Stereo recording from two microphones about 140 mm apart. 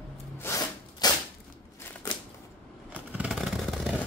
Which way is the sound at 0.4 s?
25° left (ahead or behind).